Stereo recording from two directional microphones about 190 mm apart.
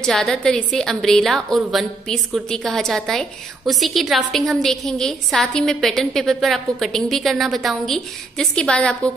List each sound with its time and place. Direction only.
0.0 s a woman's voice: 5° left (ahead or behind)